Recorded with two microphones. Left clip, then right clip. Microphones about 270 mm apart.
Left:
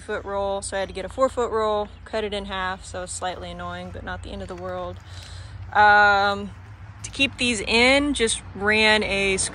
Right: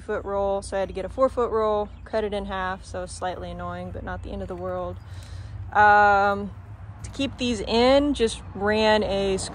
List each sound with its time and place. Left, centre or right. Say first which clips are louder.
0.0 s speech: right 1 dB; centre